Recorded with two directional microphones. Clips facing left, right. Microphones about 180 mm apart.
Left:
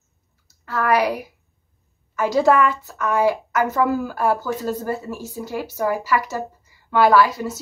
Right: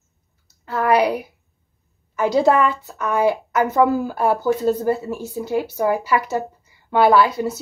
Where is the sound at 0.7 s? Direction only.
25° right (ahead or behind).